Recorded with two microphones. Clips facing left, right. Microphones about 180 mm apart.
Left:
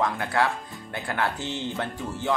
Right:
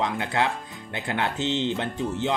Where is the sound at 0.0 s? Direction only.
20° right (ahead or behind).